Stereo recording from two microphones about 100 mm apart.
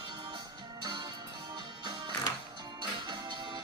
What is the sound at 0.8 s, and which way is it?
Music, 45° right (ahead or behind).